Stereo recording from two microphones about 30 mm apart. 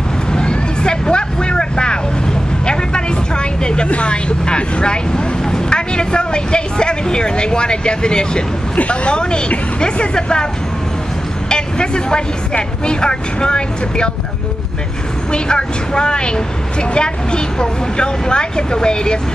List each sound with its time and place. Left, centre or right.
0.3 s vehicle: left
8.7 s speech: left
11.4 s speech: left
15.3 s speech: left